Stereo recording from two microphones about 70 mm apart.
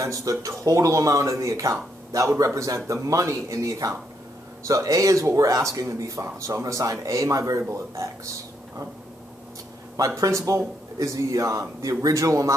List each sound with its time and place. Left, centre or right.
0.0 s speech: right
9.9 s speech: right